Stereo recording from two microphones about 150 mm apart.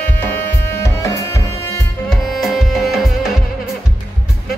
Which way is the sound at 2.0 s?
Centre (ahead or behind).